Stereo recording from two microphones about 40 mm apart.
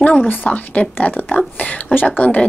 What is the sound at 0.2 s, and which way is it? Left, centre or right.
Speech, left.